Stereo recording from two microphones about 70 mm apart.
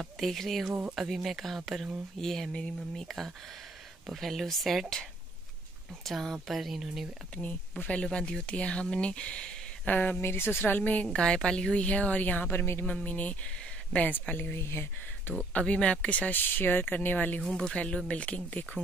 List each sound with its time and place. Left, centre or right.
0.2 s speech: centre
0.7 s speech: centre
0.9 s speech: centre
4.1 s speech: centre
6.0 s speech: centre
7.4 s speech: centre
11.1 s speech: centre; by 12.8 s left
12.8 s speech: left
15.3 s speech: centre
17.4 s speech: centre